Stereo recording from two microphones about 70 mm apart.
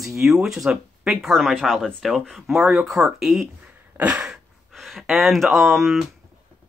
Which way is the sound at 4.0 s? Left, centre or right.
Centre.